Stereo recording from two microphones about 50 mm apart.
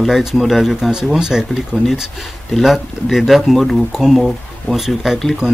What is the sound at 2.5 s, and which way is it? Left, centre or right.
Speech, centre.